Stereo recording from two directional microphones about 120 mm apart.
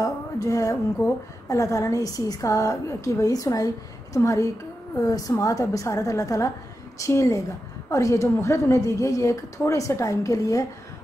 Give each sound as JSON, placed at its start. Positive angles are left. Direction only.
{"t": 0.0, "sound": "a woman's voice", "side_deg": 30}